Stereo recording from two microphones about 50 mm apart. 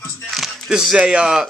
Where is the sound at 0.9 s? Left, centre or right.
Centre.